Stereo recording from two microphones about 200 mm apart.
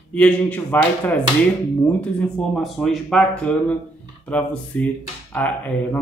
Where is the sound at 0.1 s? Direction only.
5° left (ahead or behind).